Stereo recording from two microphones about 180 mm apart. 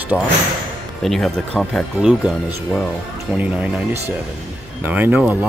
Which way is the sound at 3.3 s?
10° right (ahead or behind).